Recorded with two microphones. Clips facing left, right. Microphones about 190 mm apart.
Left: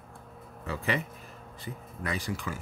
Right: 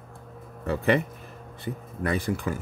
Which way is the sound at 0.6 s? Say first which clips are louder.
Right 8 dB; 60° right (ahead or behind).